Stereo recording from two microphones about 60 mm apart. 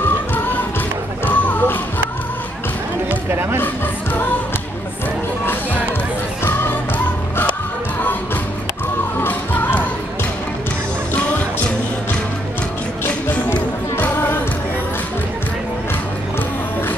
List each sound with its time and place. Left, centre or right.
1.2 s music: left
3.3 s music: right
3.5 s music: left
9.2 s music: left
11.1 s music: left
13.0 s music: left